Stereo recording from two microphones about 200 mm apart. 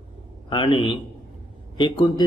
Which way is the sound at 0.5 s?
25° left (ahead or behind).